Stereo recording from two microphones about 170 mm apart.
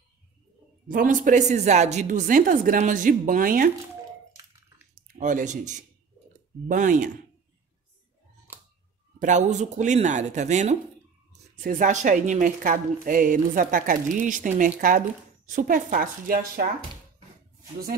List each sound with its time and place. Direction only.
0.8 s speech: 50° right (ahead or behind)
5.1 s speech: 45° right (ahead or behind)
9.2 s speech: 45° right (ahead or behind)